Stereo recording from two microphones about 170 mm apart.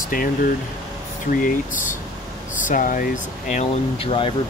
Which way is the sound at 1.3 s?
50° left (ahead or behind).